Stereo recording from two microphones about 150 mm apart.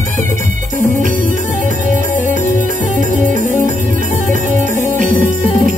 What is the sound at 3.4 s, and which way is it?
Music, 60° left (ahead or behind).